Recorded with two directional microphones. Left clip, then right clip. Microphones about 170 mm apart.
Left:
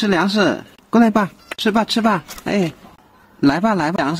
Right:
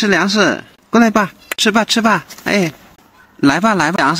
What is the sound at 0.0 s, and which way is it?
Speech, 20° right (ahead or behind).